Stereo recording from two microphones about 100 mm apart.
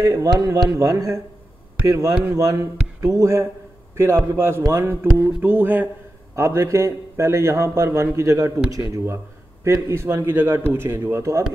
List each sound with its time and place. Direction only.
0.0 s a man's voice: 35° right (ahead or behind)